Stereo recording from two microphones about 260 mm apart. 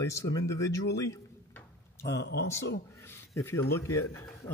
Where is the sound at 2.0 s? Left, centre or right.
Left.